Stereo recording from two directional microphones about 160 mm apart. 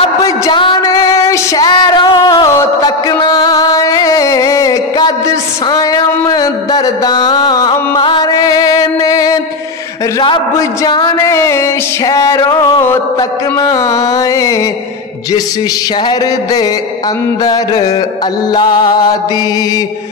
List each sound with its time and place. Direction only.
0.2 s music: 30° left (ahead or behind)
10.8 s music: 25° left (ahead or behind)
18.5 s music: 25° left (ahead or behind)